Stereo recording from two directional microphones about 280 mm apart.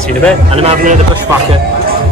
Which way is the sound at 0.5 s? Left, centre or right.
Right.